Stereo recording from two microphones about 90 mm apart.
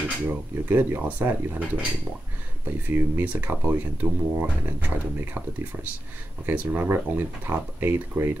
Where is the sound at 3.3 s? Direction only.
20° right (ahead or behind).